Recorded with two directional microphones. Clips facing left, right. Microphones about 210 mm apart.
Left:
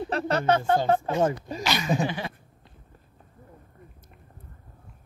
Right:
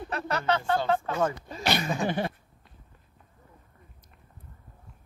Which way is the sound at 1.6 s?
55° right (ahead or behind).